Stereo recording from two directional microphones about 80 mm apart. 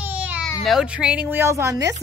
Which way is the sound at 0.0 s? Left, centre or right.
Right.